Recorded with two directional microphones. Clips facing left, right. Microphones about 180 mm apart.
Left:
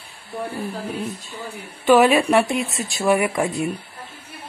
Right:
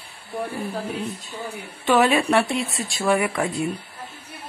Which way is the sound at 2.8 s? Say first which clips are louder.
Left 2 dB; 20° left (ahead or behind).